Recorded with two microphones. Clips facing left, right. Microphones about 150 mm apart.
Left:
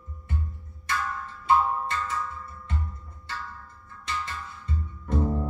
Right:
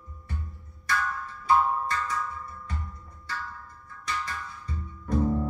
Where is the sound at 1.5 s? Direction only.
25° left (ahead or behind).